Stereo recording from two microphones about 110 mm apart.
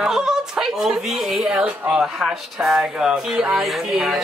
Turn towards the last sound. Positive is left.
turn(degrees=-5)  # may be behind; listen again after turning